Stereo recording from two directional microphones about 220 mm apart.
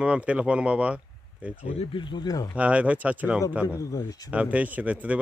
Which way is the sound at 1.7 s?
25° left (ahead or behind).